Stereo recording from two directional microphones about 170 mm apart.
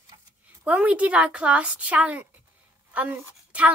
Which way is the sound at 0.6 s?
10° right (ahead or behind).